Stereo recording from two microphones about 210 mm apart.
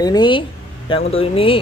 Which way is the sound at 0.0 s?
20° left (ahead or behind).